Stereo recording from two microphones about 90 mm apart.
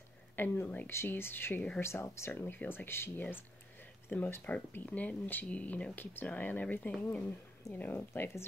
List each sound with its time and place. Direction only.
0.4 s speech: 20° left (ahead or behind)
1.8 s speech: 30° left (ahead or behind)